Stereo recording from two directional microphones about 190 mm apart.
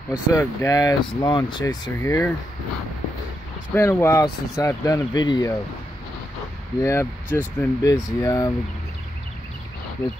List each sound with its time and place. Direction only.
0.1 s speech: 15° left (ahead or behind)
3.7 s speech: 15° left (ahead or behind)
6.8 s speech: 15° left (ahead or behind)